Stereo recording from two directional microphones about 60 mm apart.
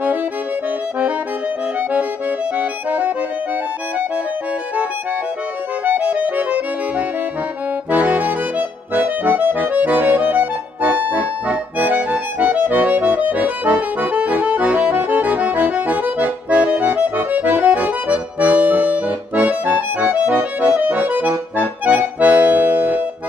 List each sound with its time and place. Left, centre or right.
1.8 s accordion: right
5.9 s accordion: right